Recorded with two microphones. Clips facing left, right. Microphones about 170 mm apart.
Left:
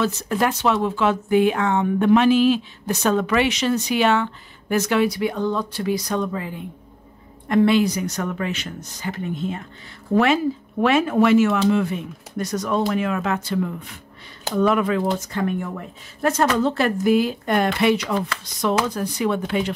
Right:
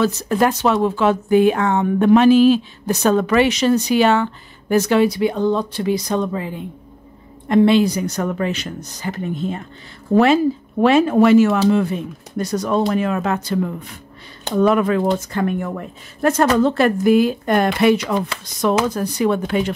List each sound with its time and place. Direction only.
0.0 s a woman's voice: 40° right (ahead or behind)